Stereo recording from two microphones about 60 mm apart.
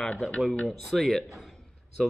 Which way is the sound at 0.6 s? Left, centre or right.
Centre.